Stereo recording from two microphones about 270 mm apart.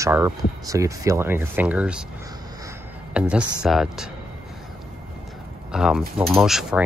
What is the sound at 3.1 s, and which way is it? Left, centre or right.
Speech, centre.